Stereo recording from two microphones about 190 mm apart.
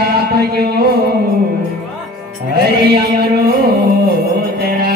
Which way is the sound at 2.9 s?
55° right (ahead or behind).